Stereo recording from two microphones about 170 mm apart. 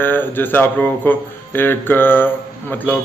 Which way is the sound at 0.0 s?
10° left (ahead or behind).